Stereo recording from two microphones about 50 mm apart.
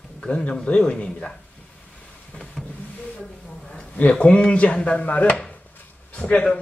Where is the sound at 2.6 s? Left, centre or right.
Centre.